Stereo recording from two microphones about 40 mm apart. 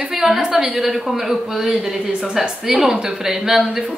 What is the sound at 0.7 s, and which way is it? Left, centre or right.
Speech, centre.